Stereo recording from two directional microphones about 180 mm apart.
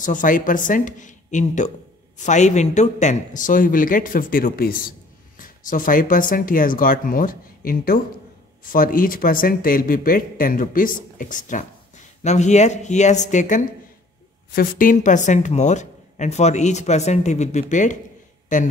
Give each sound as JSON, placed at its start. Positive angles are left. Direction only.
{"t": 0.0, "sound": "a woman's voice", "side_deg": 45}